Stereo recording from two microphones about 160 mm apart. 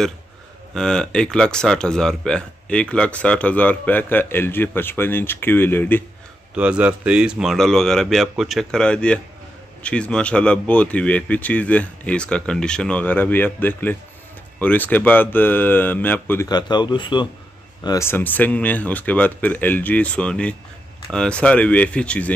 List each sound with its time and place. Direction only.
0.7 s speech: 5° left (ahead or behind)
6.5 s speech: 10° right (ahead or behind); by 16.4 s 10° left (ahead or behind)
16.4 s speech: 25° left (ahead or behind)
17.8 s speech: 15° left (ahead or behind)